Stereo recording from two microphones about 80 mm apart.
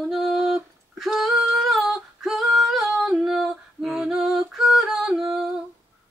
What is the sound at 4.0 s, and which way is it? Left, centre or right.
Yodeling, centre.